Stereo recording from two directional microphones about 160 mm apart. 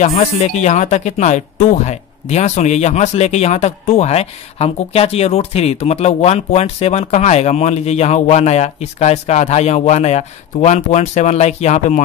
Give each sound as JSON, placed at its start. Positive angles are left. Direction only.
{"t": 0.0, "sound": "speech", "side_deg": 45}